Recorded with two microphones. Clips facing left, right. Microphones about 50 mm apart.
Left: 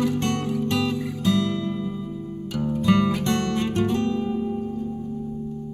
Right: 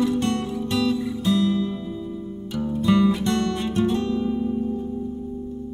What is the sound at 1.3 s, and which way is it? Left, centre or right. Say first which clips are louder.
Music: right 2 dB; left.